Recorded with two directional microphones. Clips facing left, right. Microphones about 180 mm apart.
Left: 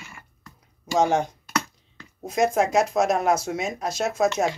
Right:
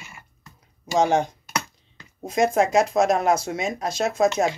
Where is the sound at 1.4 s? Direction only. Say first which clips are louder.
Left 2 dB; 20° right (ahead or behind).